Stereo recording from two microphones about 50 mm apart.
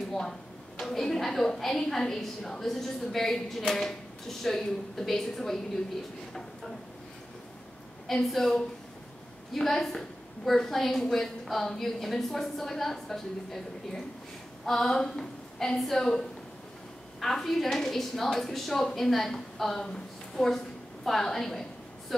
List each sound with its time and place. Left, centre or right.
0.1 s a woman's voice: centre
8.3 s a woman's voice: centre